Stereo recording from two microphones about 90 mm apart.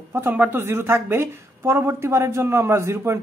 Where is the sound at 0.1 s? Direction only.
20° right (ahead or behind).